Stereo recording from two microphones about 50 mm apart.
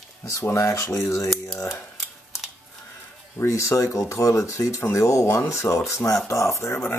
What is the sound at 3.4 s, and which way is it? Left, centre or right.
Speech, left.